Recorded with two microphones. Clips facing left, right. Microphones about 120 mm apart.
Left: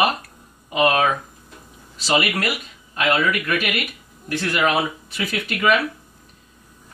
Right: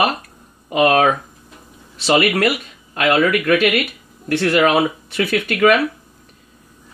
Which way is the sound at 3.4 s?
75° right (ahead or behind).